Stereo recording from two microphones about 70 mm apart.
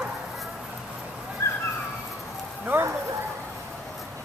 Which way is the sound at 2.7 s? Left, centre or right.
Right.